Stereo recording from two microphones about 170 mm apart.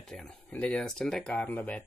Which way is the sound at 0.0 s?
5° left (ahead or behind).